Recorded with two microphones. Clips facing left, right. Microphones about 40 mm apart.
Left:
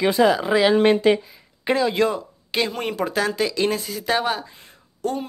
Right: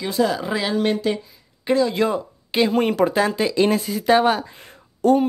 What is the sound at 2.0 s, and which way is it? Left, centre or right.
Speech, centre.